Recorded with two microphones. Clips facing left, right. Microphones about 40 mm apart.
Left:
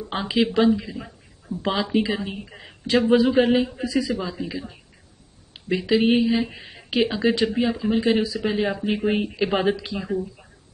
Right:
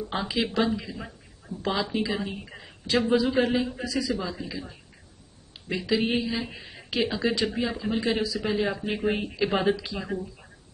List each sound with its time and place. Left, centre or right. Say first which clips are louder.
0.1 s a man's voice: left 7 dB; left
0.5 s speech: left 7 dB; centre
1.6 s a man's voice: left 5 dB; left
2.1 s speech: left 2 dB; centre
2.9 s a man's voice: left 5 dB; left
4.2 s speech: left 4 dB; centre
5.8 s a man's voice: left 6 dB; left